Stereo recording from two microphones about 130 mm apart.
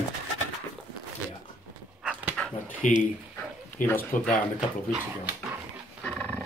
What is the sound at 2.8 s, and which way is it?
Speech, 70° left (ahead or behind).